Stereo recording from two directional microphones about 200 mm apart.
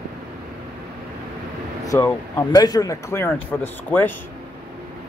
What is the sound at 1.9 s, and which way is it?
Speech, 15° left (ahead or behind).